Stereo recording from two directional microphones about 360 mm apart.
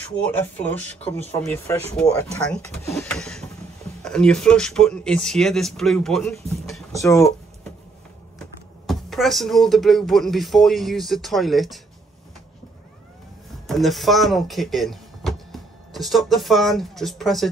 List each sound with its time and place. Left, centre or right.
0.3 s speech: centre
8.8 s speech: centre
13.7 s speech: centre